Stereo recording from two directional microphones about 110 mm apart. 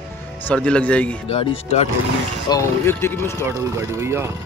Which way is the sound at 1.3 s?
60° left (ahead or behind).